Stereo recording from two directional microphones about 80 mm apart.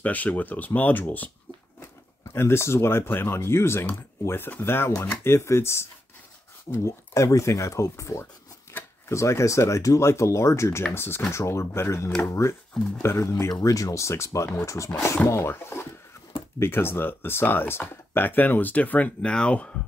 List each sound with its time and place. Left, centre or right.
0.0 s speech: centre
2.3 s speech: left
13.5 s speech: left; by 19.8 s centre